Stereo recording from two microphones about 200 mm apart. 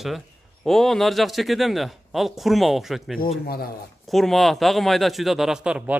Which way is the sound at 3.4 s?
50° left (ahead or behind).